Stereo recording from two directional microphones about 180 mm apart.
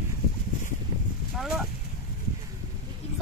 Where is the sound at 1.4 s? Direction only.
Centre (ahead or behind).